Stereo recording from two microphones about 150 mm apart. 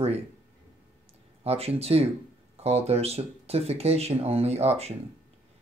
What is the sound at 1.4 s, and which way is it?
Speech, 40° right (ahead or behind).